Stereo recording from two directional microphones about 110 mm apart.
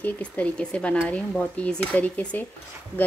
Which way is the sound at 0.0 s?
10° left (ahead or behind).